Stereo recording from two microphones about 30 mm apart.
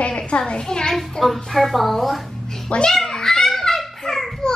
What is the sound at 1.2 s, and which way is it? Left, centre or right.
Speech, centre.